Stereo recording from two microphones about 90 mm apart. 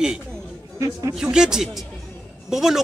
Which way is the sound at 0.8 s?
40° right (ahead or behind).